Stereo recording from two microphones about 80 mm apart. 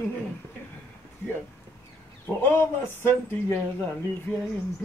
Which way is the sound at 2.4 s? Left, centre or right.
Left.